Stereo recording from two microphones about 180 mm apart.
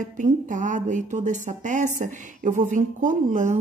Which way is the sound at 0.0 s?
45° right (ahead or behind).